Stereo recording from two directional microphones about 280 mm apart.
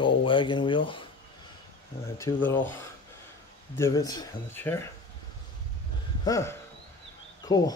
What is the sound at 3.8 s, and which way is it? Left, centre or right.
Speech, centre.